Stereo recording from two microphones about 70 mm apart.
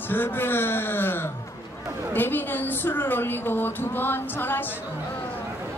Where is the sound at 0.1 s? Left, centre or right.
Left.